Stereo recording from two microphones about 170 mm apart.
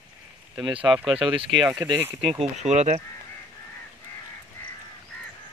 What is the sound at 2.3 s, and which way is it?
Speech, 40° right (ahead or behind).